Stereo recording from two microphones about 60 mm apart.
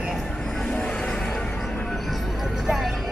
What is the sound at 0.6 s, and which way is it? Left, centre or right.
Music, centre.